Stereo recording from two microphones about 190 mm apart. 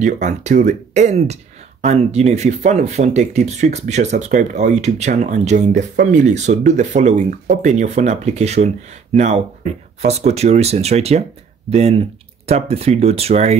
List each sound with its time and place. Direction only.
0.0 s speech: 40° right (ahead or behind)